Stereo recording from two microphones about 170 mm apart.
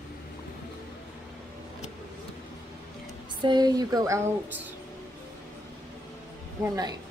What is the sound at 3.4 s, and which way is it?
Speech, 25° right (ahead or behind).